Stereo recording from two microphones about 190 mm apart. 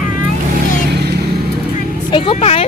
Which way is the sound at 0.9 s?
60° right (ahead or behind).